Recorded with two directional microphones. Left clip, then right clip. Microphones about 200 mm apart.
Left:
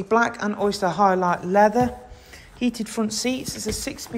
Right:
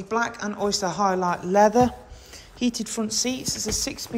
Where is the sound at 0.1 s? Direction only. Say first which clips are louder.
Left 5 dB; 5° right (ahead or behind).